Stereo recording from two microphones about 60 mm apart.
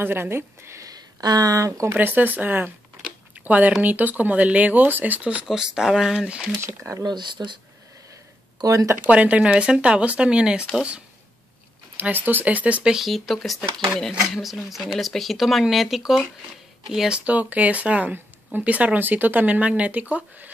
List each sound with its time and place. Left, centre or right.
0.0 s speech: right
0.7 s speech: right
2.0 s speech: right
5.5 s speech: centre
6.2 s speech: centre
6.6 s speech: right
8.5 s speech: right
9.0 s speech: right
12.0 s speech: right
12.8 s speech: centre
17.1 s speech: right